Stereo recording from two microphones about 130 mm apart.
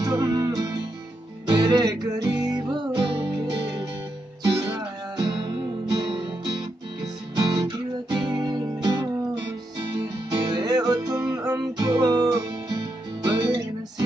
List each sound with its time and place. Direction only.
0.0 s music: 30° right (ahead or behind)